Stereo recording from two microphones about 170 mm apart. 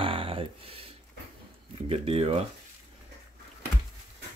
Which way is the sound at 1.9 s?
35° right (ahead or behind).